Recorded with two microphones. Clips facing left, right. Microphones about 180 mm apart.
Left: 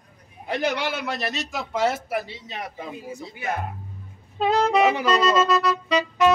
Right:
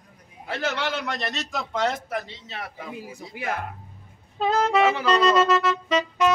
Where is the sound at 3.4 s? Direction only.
90° right.